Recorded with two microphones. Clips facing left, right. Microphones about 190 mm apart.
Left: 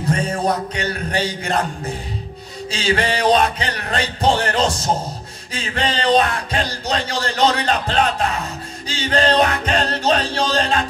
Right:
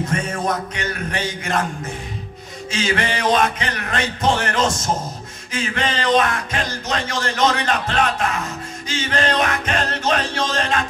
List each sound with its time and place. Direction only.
0.0 s speech: 35° left (ahead or behind)
2.7 s speech: 30° left (ahead or behind)